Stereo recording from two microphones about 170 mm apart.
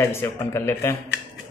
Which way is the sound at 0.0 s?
15° left (ahead or behind).